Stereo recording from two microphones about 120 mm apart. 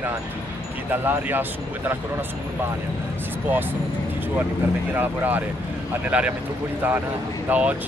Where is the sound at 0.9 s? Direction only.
15° right (ahead or behind).